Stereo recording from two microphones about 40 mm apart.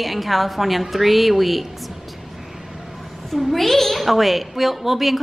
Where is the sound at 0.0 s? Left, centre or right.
Centre.